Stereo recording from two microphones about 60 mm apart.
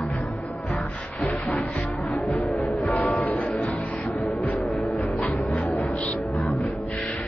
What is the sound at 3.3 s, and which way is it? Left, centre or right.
Music, left.